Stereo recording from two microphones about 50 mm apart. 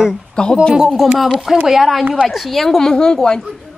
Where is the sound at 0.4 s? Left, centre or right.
Centre.